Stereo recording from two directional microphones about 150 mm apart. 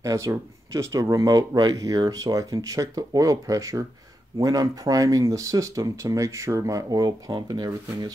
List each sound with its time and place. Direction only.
0.0 s speech: 20° right (ahead or behind)